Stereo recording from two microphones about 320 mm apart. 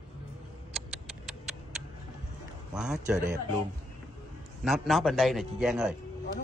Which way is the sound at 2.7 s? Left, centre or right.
Centre.